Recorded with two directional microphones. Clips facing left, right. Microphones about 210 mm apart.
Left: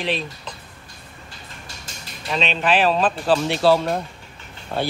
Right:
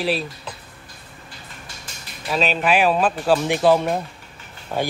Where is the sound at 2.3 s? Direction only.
5° right (ahead or behind).